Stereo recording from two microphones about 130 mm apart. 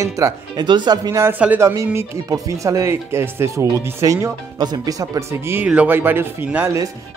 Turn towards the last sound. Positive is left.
turn(degrees=-15)  # may be behind; listen again after turning